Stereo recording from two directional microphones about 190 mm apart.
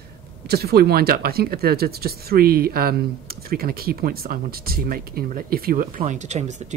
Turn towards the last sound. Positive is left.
turn(degrees=-35)  # may be behind; listen again after turning